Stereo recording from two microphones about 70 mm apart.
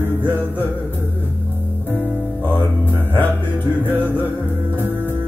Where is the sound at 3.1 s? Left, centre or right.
Left.